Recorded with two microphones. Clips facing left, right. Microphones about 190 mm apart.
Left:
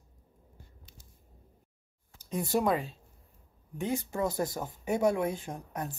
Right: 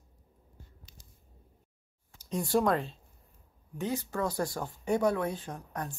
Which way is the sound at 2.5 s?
Centre (ahead or behind).